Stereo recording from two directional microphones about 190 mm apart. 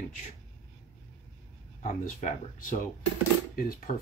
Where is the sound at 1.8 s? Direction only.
40° left (ahead or behind).